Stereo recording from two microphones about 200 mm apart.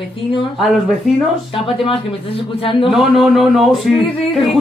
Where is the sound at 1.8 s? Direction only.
25° left (ahead or behind).